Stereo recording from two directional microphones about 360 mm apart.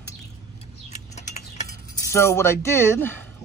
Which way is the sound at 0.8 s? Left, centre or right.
Centre.